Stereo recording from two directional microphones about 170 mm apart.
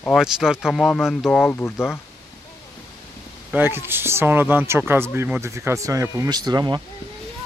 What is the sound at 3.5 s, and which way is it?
Speech, 15° right (ahead or behind).